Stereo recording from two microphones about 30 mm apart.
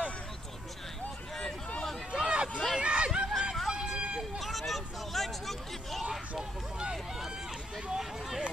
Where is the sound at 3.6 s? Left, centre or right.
Centre.